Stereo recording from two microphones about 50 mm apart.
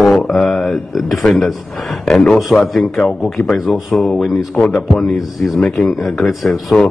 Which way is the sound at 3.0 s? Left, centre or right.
Centre.